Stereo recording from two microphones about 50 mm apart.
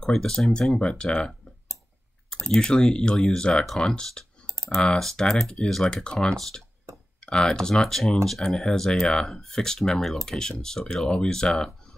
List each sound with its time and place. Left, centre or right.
0.1 s speech: centre
0.5 s speech: centre
7.2 s speech: centre